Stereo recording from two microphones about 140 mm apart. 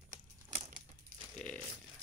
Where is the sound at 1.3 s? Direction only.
10° left (ahead or behind).